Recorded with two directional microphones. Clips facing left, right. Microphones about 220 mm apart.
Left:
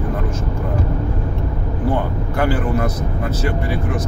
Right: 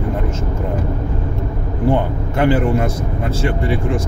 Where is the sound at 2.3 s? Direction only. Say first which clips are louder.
Right 4 dB; 25° right (ahead or behind).